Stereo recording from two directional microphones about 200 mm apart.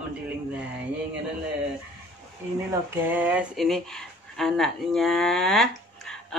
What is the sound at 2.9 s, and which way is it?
Speech, 10° right (ahead or behind).